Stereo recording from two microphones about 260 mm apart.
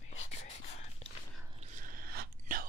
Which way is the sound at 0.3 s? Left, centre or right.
Left.